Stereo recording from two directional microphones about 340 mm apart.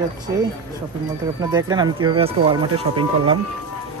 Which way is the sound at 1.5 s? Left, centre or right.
Centre.